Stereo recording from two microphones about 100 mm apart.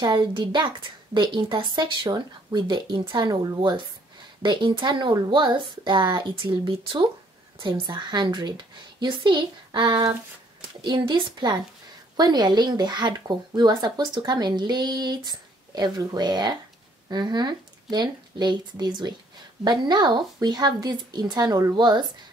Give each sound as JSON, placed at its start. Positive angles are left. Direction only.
{"t": 0.0, "sound": "a woman's voice", "side_deg": -50}
{"t": 7.8, "sound": "speech", "side_deg": -45}